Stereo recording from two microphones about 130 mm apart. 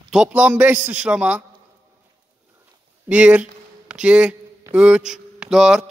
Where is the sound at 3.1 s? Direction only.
10° right (ahead or behind).